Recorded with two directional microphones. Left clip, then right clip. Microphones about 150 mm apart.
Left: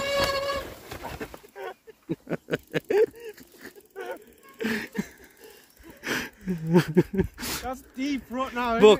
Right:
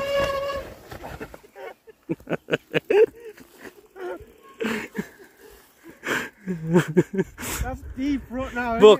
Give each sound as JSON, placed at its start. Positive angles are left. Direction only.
{"t": 0.0, "sound": "a sound", "side_deg": 10}
{"t": 4.0, "sound": "music", "side_deg": 15}
{"t": 6.0, "sound": "speech", "side_deg": 5}